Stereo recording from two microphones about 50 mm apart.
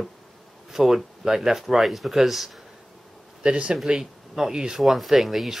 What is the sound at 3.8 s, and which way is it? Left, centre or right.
Speech, centre.